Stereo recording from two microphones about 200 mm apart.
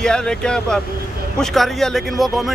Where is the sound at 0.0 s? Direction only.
5° left (ahead or behind).